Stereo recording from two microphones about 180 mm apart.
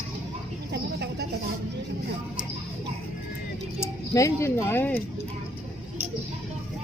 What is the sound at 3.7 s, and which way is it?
Speech, 15° left (ahead or behind).